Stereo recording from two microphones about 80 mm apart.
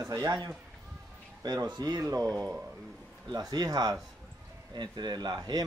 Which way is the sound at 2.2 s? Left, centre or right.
Centre.